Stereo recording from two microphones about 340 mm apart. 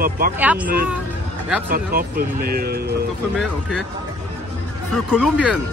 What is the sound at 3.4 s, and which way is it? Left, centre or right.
Speech, centre.